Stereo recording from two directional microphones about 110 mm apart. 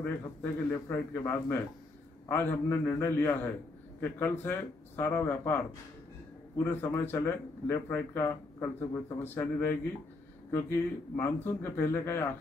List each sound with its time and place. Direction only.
0.0 s a man's voice: 20° left (ahead or behind)
11.1 s a man's voice: 20° left (ahead or behind)